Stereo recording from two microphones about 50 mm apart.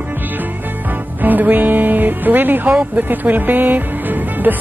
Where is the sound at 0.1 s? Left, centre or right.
Right.